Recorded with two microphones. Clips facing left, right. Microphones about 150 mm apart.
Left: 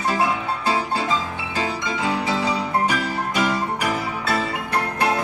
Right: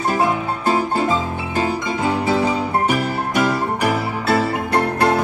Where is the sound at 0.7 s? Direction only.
50° right (ahead or behind); by 4.5 s 65° right (ahead or behind).